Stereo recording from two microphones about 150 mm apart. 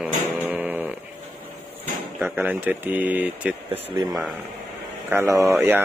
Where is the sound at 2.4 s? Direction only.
10° right (ahead or behind).